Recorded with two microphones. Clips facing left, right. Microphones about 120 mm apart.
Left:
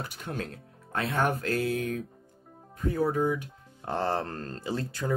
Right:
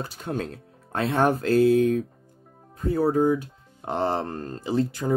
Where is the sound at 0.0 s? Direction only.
30° right (ahead or behind).